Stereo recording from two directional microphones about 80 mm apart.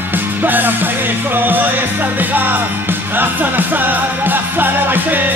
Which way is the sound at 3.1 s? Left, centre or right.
Right.